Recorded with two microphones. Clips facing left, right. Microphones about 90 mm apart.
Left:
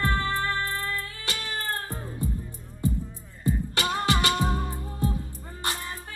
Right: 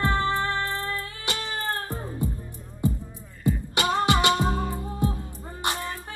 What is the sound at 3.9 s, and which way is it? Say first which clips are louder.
Music: right 4 dB; 20° right (ahead or behind).